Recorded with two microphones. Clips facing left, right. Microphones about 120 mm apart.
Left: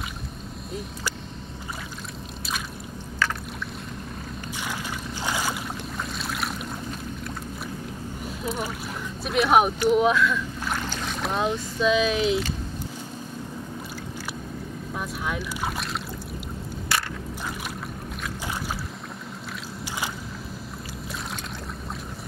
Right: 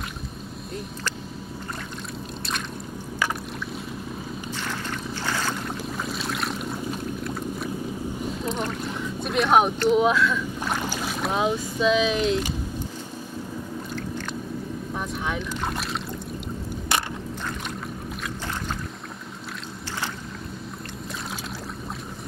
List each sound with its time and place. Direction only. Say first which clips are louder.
5.2 s boat: left 1 dB; 10° left (ahead or behind)
6.1 s boat: right 1 dB; centre (ahead or behind)
9.8 s speech: even; centre (ahead or behind)
10.6 s boat: right 2 dB; 10° right (ahead or behind)
15.0 s boat: even; 5° left (ahead or behind)
16.9 s a sound: right 2 dB; 20° right (ahead or behind)